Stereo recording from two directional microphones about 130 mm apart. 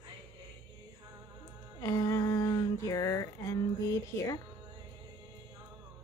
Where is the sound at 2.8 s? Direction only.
25° left (ahead or behind).